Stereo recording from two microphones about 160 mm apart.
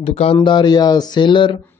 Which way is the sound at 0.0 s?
40° left (ahead or behind).